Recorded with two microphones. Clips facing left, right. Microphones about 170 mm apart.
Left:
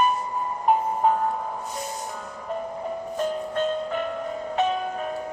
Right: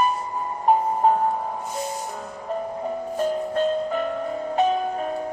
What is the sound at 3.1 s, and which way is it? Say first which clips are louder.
Music: right 3 dB; 40° right (ahead or behind).